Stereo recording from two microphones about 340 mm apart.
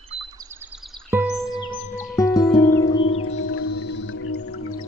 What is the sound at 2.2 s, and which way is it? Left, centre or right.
Music, centre.